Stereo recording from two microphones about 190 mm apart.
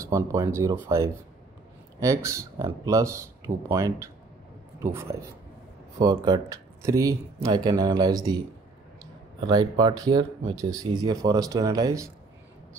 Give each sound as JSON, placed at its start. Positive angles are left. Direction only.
{"t": 0.0, "sound": "speech", "side_deg": -15}
{"t": 5.9, "sound": "speech", "side_deg": -20}
{"t": 9.5, "sound": "speech", "side_deg": -20}